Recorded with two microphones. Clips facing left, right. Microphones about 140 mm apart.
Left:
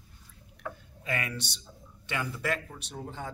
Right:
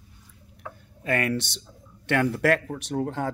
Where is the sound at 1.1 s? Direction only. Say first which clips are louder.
Right 9 dB; 60° right (ahead or behind).